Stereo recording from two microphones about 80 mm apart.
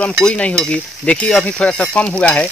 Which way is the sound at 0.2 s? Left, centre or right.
Centre.